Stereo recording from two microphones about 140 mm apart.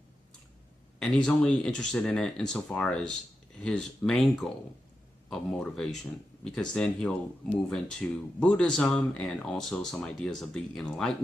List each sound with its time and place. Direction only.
0.9 s speech: 5° left (ahead or behind)